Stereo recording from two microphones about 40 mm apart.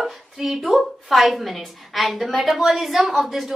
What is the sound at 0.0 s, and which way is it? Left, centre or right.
A woman's voice, centre.